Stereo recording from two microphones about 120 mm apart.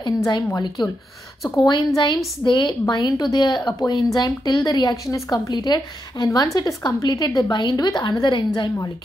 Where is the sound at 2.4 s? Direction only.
40° left (ahead or behind).